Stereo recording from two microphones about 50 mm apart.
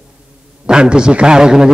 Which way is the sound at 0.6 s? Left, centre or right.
Centre.